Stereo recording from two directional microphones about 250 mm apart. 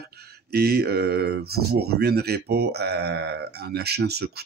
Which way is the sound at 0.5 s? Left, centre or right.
Right.